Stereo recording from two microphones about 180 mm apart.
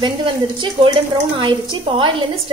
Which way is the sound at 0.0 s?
25° right (ahead or behind).